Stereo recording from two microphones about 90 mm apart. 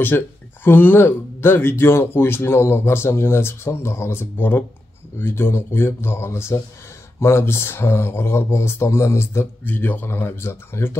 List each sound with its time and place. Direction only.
0.1 s speech: 25° left (ahead or behind)